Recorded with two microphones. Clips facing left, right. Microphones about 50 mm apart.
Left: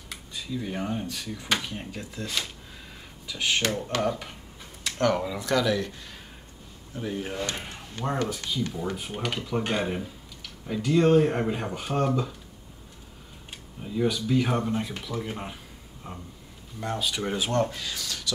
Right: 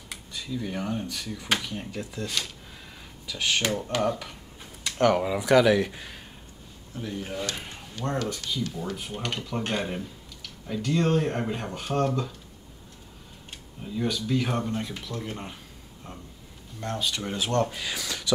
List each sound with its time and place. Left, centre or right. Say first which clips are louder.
0.3 s speech: even; centre
3.8 s speech: right 1 dB; centre
4.9 s speech: right 3 dB; centre
7.0 s speech: left 2 dB; centre
8.7 s speech: left 2 dB; centre
13.5 s speech: left 1 dB; centre
17.6 s speech: right 2 dB; centre